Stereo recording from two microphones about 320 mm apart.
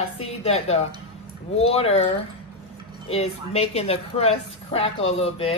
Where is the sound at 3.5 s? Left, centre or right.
Centre.